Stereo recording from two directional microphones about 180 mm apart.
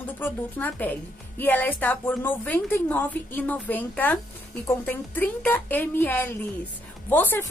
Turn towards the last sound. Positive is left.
turn(degrees=10)  # may be behind; listen again after turning